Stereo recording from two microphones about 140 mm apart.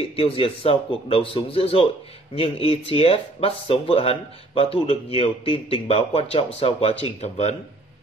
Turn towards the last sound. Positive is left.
turn(degrees=50)  # may be behind; listen again after turning